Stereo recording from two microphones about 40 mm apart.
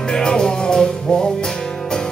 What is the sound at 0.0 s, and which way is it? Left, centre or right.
Music, centre.